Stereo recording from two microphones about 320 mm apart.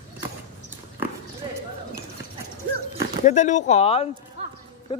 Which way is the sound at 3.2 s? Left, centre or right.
Left.